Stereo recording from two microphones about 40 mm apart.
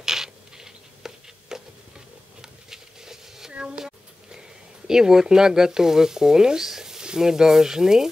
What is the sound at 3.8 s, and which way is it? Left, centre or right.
Speech, centre.